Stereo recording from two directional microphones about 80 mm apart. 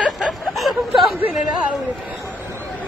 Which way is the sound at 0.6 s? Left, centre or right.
Centre.